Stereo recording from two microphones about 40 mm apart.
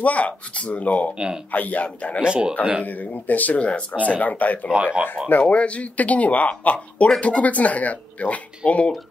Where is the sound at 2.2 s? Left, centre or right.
Right.